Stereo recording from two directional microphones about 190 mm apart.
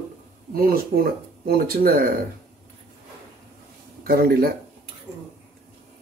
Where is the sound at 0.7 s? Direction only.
50° right (ahead or behind).